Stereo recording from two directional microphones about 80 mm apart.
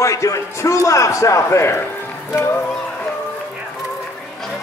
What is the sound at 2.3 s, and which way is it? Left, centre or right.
Speech, left.